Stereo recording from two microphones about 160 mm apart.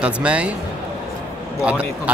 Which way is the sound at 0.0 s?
5° right (ahead or behind).